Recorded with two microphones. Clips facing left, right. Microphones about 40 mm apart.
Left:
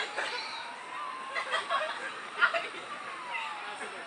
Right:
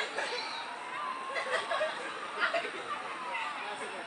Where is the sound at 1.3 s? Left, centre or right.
Left.